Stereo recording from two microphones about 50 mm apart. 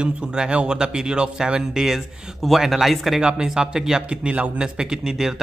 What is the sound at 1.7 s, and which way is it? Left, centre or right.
Speech, centre.